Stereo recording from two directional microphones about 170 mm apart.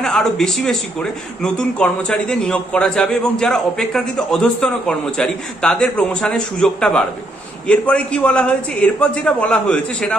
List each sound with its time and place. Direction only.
0.0 s a man's voice: centre (ahead or behind)